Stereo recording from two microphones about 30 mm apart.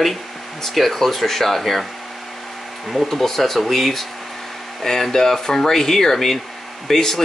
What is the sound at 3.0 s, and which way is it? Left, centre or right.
Speech, centre.